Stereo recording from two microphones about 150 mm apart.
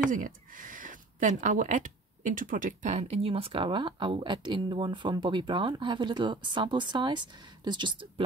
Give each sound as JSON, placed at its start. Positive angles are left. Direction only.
{"t": 0.1, "sound": "speech", "side_deg": -60}